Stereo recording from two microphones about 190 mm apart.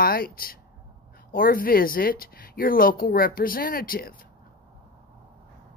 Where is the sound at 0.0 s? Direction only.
50° left (ahead or behind).